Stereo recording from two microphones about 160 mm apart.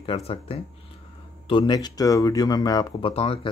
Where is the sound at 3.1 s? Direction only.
35° left (ahead or behind).